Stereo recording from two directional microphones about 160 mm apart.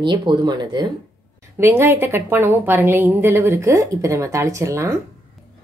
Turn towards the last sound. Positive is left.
turn(degrees=-20)  # may be behind; listen again after turning